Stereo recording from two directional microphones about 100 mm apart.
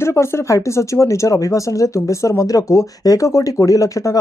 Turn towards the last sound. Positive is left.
turn(degrees=35)  # may be behind; listen again after turning